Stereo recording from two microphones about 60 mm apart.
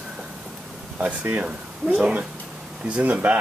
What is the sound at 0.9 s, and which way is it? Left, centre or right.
Speech, right.